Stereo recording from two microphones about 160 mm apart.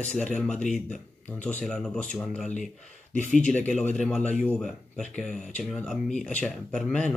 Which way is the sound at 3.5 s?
5° left (ahead or behind).